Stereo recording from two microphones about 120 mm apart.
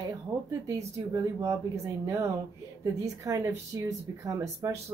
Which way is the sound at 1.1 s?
30° right (ahead or behind).